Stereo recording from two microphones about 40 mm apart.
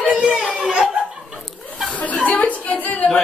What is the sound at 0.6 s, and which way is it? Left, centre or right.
Laughter, right.